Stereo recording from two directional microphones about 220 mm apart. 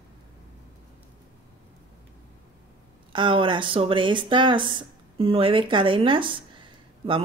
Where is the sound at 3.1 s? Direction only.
20° right (ahead or behind).